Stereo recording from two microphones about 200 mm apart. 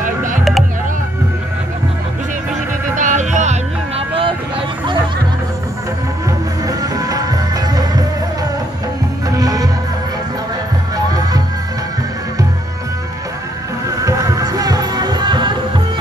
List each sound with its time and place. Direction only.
0.0 s a sound: 40° right (ahead or behind)
3.0 s music: 35° right (ahead or behind)
6.7 s music: 20° right (ahead or behind)
9.4 s music: 15° right (ahead or behind)
13.8 s music: 15° right (ahead or behind)